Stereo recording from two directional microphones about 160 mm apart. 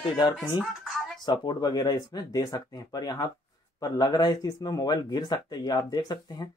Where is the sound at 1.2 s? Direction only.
30° left (ahead or behind).